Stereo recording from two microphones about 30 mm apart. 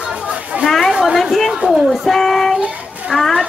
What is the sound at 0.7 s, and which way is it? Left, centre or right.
Speech, centre.